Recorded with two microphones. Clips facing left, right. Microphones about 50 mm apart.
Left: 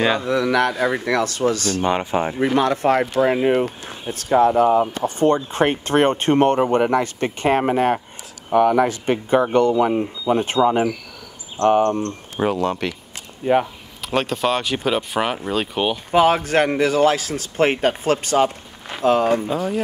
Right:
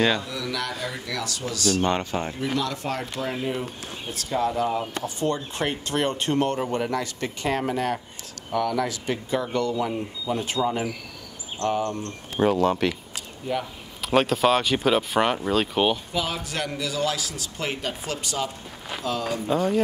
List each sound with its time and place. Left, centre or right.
0.2 s speech: left
1.8 s speech: centre
2.3 s speech: left
12.4 s speech: centre
13.4 s speech: left
14.0 s speech: centre
16.1 s speech: left
19.5 s speech: centre